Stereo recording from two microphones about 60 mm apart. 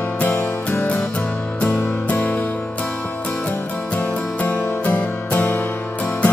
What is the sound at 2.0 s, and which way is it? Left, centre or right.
Music, left.